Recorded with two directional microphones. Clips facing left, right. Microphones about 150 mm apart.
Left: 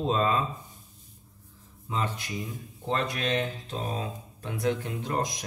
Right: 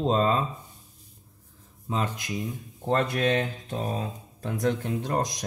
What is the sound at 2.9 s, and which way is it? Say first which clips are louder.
Speech: right 4 dB; 50° right (ahead or behind).